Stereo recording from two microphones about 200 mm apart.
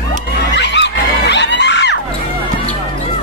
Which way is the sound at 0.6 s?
60° left (ahead or behind).